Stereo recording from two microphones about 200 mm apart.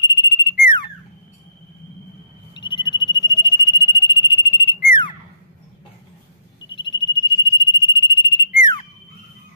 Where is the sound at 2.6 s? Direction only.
25° left (ahead or behind).